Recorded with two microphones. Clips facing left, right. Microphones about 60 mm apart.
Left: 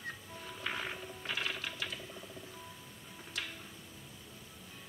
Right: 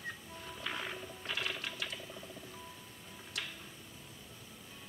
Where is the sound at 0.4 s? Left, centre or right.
Centre.